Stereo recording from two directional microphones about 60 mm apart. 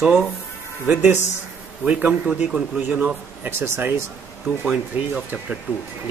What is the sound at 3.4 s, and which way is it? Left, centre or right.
Speech, right.